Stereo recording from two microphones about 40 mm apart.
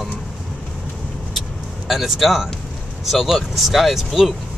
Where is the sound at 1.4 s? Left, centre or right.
Centre.